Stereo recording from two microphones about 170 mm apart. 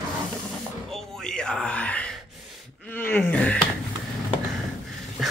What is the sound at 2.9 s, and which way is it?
Groan, 10° left (ahead or behind).